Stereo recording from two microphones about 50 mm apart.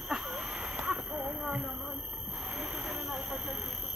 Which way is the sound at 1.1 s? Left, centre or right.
Right.